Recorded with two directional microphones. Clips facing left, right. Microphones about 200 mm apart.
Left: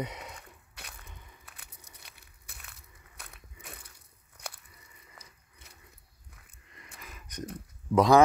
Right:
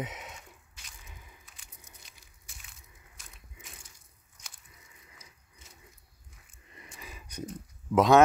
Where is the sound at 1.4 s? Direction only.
60° left (ahead or behind).